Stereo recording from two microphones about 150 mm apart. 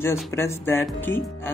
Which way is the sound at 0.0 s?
15° left (ahead or behind).